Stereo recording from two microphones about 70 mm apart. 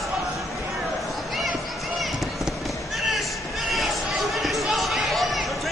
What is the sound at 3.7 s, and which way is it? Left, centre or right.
Basketball bounce, centre.